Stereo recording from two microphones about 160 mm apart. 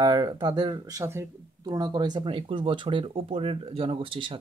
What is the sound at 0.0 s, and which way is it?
Speech, 25° right (ahead or behind).